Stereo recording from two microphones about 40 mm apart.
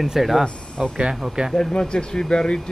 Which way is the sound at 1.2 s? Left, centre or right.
Centre.